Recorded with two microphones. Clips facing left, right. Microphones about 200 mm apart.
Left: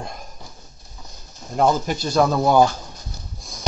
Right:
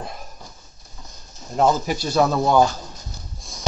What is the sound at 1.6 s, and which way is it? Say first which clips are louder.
Speech: even; 5° right (ahead or behind).